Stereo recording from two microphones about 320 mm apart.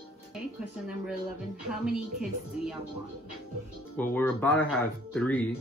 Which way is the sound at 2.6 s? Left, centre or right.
Centre.